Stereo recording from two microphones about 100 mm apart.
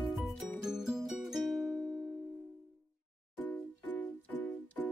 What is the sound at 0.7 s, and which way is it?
Music, 5° right (ahead or behind).